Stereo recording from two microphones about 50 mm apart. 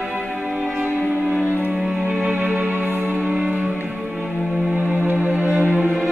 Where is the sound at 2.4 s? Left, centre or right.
Right.